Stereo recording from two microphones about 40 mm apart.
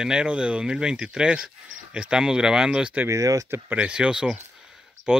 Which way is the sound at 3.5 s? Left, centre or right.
Right.